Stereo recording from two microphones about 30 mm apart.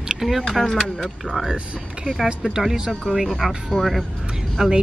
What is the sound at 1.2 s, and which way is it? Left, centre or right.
Speech, left.